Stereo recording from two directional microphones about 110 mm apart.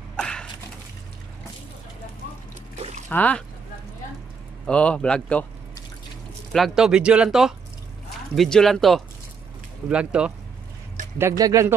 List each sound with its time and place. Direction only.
0.1 s a sound: 5° left (ahead or behind)
3.1 s speech: 15° left (ahead or behind)
4.6 s speech: 10° left (ahead or behind)
6.5 s speech: centre (ahead or behind)
9.8 s speech: 10° right (ahead or behind)
11.1 s speech: 30° right (ahead or behind)